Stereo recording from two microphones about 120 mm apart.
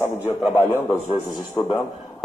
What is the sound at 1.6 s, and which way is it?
Speech, 20° left (ahead or behind).